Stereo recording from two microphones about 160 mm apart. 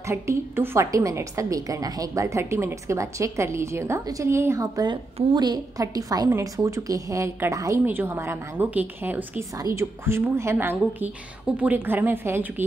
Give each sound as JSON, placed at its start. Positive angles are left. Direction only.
{"t": 0.1, "sound": "a woman's voice", "side_deg": -15}